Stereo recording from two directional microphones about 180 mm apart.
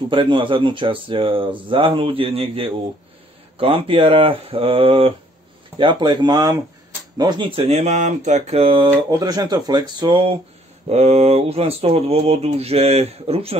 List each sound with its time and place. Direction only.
0.1 s speech: 30° right (ahead or behind)